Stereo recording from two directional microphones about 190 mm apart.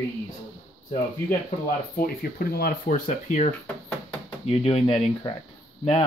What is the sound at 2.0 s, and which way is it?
Speech, 50° left (ahead or behind).